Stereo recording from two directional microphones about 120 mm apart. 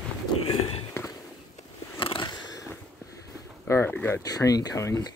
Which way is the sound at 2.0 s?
45° left (ahead or behind).